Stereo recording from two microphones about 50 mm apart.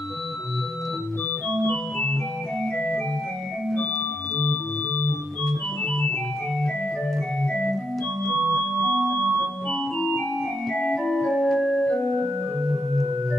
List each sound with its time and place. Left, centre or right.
1.7 s organ: centre
5.4 s organ: centre
9.7 s organ: centre
11.2 s organ: centre